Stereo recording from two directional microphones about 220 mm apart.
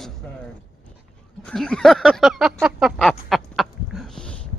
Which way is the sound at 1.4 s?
5° left (ahead or behind).